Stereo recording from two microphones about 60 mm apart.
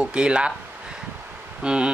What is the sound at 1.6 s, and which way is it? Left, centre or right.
Speech, centre.